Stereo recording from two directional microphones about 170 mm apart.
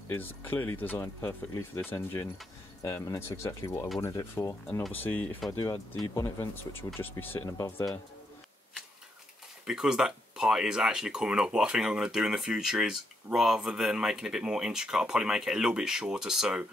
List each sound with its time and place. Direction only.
0.1 s speech: 10° left (ahead or behind)
9.7 s speech: 5° right (ahead or behind)